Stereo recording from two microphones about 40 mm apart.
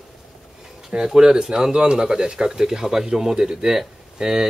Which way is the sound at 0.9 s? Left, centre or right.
Centre.